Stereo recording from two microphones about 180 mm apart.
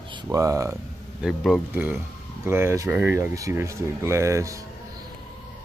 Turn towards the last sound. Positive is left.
turn(degrees=-20)  # may be behind; listen again after turning